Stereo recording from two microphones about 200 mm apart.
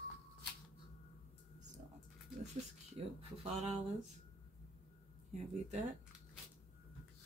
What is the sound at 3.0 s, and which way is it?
Speech, 30° right (ahead or behind).